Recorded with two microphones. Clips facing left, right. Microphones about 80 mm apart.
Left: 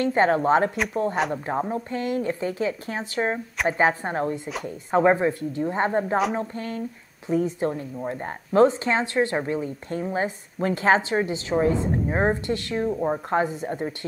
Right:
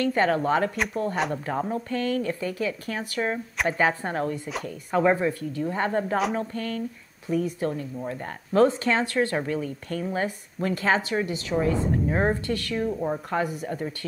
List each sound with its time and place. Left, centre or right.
0.0 s a woman's voice: left
0.7 s speech: centre
1.3 s a woman's voice: centre